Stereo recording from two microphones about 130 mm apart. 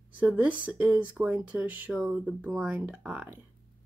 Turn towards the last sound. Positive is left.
turn(degrees=-10)  # may be behind; listen again after turning